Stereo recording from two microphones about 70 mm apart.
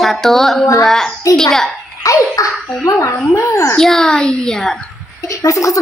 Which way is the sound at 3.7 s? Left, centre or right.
Centre.